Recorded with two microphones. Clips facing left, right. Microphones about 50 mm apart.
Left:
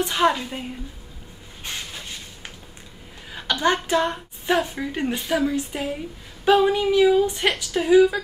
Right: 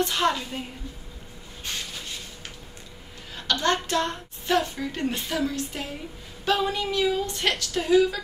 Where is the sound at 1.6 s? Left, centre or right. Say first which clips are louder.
Left 1 dB; centre.